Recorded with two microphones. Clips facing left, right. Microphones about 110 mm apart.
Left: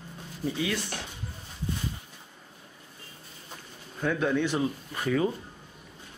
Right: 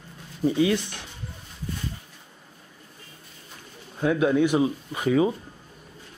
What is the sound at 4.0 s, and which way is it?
Speech, 10° right (ahead or behind).